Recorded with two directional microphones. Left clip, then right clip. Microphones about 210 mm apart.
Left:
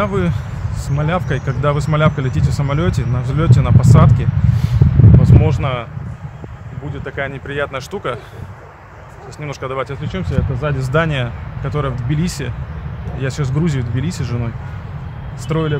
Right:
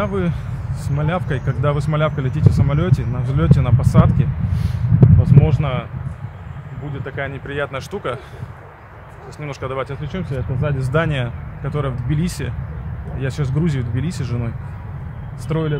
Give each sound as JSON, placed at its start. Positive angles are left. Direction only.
{"t": 0.0, "sound": "speech", "side_deg": 0}
{"t": 7.1, "sound": "speech", "side_deg": 0}
{"t": 9.4, "sound": "speech", "side_deg": 0}